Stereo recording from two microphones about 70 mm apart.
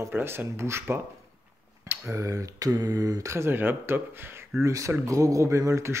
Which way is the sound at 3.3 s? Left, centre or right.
Right.